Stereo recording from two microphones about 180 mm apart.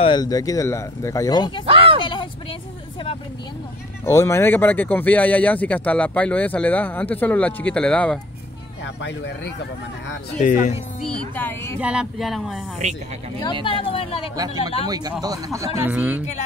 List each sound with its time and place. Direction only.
0.0 s speech: 25° left (ahead or behind)
1.7 s speech: 30° right (ahead or behind)
4.0 s speech: 15° left (ahead or behind)
8.8 s speech: 75° left (ahead or behind)
10.3 s speech: 45° left (ahead or behind)
11.1 s speech: 5° left (ahead or behind)
11.8 s speech: 5° right (ahead or behind)
13.7 s speech: 30° left (ahead or behind)
14.3 s speech: 20° right (ahead or behind)